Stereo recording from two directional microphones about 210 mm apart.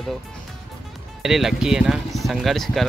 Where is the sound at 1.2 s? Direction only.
Centre (ahead or behind).